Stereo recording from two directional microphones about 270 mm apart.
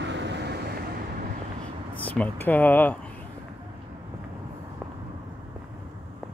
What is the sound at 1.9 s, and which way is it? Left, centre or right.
Speech, centre.